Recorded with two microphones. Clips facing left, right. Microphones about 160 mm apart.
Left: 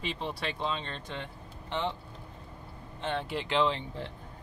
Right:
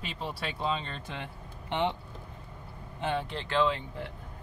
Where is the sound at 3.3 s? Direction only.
15° left (ahead or behind).